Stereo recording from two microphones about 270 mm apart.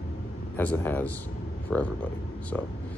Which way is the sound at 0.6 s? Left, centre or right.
Centre.